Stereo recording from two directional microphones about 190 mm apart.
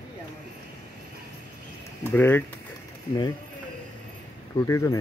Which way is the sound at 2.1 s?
10° left (ahead or behind).